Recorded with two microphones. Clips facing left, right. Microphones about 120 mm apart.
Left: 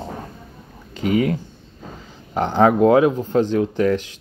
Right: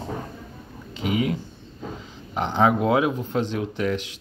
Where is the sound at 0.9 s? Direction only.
45° left (ahead or behind).